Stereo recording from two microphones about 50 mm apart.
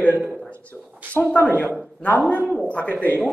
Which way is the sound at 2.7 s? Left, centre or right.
Left.